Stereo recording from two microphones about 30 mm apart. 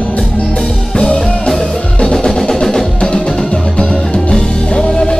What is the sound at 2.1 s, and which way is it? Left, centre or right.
Music, centre.